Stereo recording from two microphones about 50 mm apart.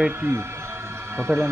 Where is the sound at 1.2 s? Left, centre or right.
Right.